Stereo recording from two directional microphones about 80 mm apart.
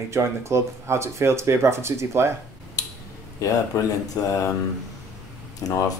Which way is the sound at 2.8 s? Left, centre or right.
Left.